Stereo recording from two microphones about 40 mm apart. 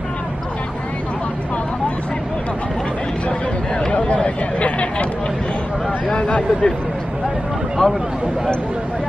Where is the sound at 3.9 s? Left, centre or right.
Left.